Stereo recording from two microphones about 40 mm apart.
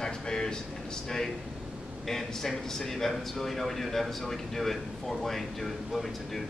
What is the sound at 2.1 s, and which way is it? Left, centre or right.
A man's voice, centre.